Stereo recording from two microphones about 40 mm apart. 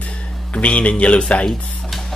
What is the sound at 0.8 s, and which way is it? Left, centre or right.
Speech, left.